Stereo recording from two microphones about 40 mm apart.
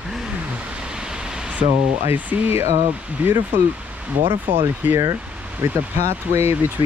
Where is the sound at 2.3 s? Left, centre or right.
Right.